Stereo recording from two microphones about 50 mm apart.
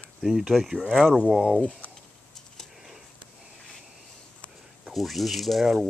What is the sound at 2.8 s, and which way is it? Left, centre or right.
Sniff, centre.